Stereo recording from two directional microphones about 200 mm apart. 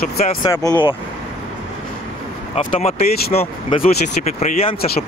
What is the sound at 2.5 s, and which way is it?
Speech, 40° left (ahead or behind).